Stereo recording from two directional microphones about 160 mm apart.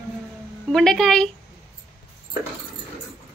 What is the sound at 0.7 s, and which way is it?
Speech, 5° left (ahead or behind).